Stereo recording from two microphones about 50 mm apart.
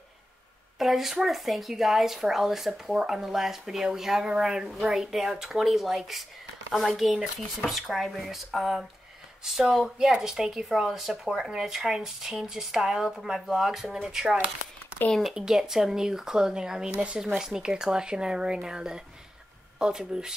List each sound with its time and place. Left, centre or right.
0.7 s speech: centre
16.9 s speech: right
17.4 s speech: centre